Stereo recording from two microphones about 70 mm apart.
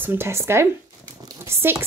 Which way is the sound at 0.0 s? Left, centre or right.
Right.